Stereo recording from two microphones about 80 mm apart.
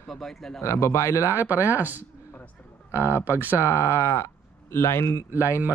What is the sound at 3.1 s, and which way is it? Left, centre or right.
Speech, right.